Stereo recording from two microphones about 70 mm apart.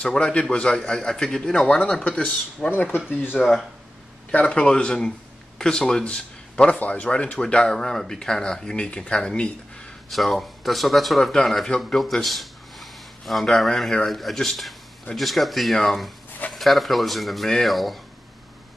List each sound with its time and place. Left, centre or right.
0.0 s speech: centre
2.7 s speech: left
3.4 s speech: centre